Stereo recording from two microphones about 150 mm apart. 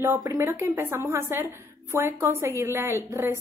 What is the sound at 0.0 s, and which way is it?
A woman's voice, 20° right (ahead or behind).